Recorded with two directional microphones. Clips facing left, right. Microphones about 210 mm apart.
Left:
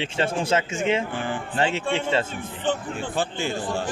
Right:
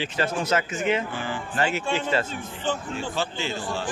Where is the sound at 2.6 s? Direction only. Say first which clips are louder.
Left 2 dB; 55° left (ahead or behind).